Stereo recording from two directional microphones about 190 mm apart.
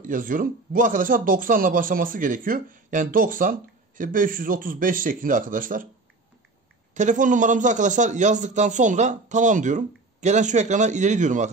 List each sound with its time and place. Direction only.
0.0 s speech: 45° right (ahead or behind)
6.9 s a man's voice: 40° right (ahead or behind)